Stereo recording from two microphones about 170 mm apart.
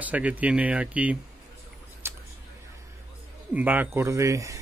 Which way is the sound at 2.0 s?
15° right (ahead or behind).